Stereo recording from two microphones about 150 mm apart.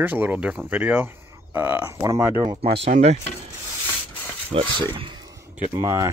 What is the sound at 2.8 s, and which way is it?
Speech, 50° right (ahead or behind).